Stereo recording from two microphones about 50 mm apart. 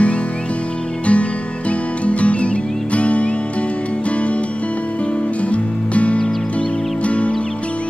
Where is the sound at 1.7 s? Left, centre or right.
Left.